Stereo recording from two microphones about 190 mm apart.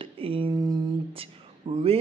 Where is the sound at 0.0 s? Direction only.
30° right (ahead or behind).